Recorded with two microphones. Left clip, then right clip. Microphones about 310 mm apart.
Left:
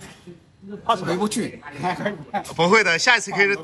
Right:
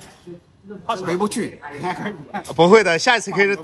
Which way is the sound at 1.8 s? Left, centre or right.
Centre.